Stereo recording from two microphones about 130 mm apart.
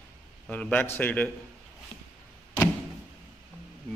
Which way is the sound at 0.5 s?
10° left (ahead or behind).